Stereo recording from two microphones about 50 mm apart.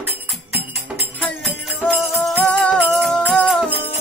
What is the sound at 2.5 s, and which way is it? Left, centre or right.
Music, left.